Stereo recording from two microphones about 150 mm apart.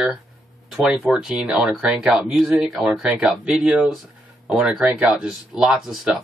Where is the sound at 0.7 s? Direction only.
5° right (ahead or behind).